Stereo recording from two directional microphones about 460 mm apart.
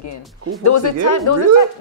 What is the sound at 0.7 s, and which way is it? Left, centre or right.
Speech, left.